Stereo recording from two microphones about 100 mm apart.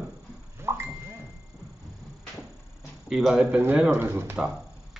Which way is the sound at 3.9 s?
25° right (ahead or behind).